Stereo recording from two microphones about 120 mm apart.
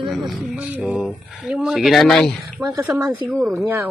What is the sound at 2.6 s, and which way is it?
Speech, 25° right (ahead or behind).